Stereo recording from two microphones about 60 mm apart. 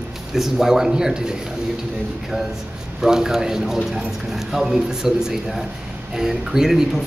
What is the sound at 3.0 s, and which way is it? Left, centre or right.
A man's voice, centre.